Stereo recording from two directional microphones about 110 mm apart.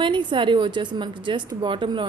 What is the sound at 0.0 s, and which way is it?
A woman's voice, 45° right (ahead or behind).